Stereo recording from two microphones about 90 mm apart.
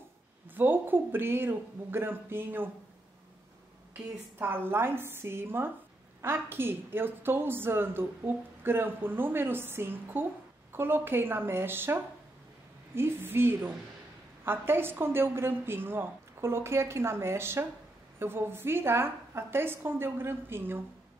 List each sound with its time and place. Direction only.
0.6 s a woman's voice: 20° right (ahead or behind)
4.4 s a woman's voice: 25° right (ahead or behind)